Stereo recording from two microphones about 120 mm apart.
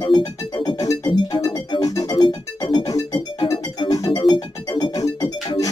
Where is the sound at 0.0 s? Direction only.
35° left (ahead or behind).